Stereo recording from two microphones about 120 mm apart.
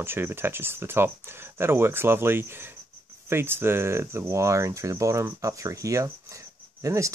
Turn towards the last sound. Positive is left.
turn(degrees=-25)  # may be behind; listen again after turning